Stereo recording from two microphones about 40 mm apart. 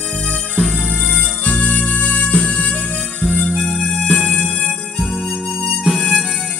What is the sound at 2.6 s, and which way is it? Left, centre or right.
Harmonica, left.